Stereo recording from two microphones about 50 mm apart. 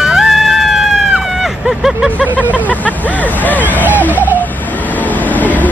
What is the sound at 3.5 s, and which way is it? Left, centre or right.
Hubbub, left.